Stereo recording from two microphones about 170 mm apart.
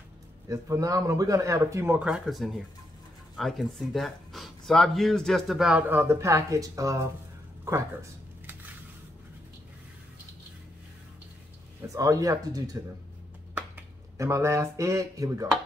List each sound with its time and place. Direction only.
0.5 s speech: 20° right (ahead or behind)
2.0 s speech: 5° right (ahead or behind)
11.9 s speech: 20° right (ahead or behind)